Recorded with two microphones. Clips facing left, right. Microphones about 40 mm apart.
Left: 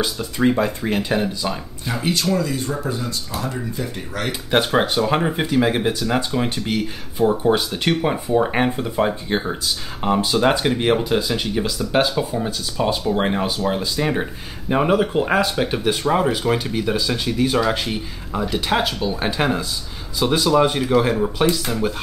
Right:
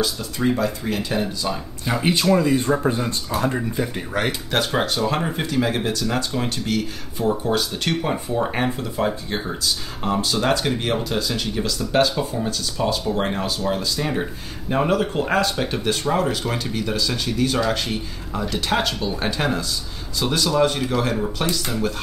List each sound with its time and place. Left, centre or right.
0.0 s speech: centre
1.2 s speech: centre
1.9 s speech: centre
2.3 s speech: right
3.3 s speech: right
4.3 s speech: centre